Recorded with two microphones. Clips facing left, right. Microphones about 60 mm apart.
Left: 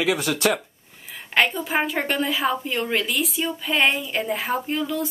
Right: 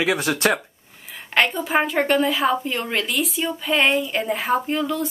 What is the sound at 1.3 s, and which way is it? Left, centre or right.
Speech, centre.